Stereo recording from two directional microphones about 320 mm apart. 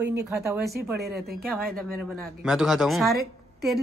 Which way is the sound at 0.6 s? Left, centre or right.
Right.